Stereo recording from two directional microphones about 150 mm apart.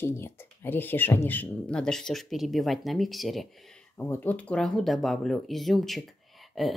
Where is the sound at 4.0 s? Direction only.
15° left (ahead or behind).